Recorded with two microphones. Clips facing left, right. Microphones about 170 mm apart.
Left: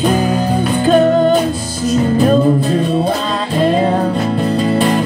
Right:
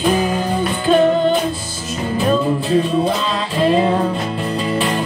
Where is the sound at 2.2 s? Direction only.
40° left (ahead or behind).